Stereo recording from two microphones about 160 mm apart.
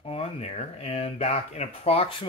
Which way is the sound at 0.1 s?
40° left (ahead or behind).